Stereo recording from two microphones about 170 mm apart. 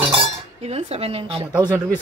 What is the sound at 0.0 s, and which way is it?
Speech, 30° right (ahead or behind).